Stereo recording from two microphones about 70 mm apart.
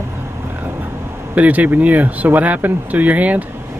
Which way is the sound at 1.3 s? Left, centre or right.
Right.